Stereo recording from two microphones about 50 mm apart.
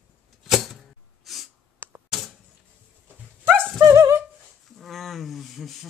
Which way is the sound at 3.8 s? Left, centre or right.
Right.